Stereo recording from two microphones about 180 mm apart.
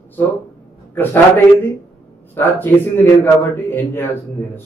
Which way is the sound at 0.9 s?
10° left (ahead or behind).